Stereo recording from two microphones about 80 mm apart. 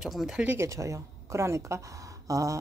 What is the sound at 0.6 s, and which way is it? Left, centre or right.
A woman's voice, right.